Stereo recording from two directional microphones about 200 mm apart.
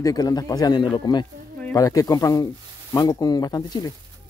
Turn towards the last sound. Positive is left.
turn(degrees=20)  # may be behind; listen again after turning